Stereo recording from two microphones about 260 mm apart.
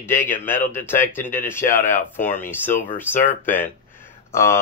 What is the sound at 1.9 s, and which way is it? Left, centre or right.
Speech, left.